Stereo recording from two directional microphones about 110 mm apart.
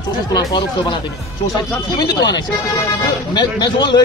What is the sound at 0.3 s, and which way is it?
Speech, 35° left (ahead or behind).